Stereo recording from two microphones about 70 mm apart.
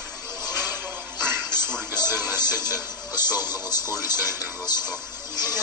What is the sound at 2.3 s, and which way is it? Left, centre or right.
A man's voice, left.